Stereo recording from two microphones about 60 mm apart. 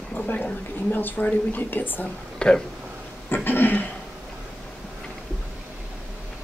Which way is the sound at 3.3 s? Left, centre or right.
Left.